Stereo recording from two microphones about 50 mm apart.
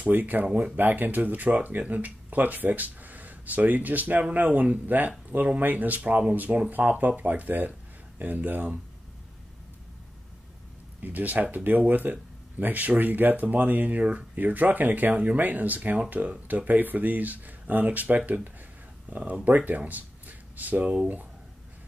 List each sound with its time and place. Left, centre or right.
0.0 s speech: right
11.0 s speech: right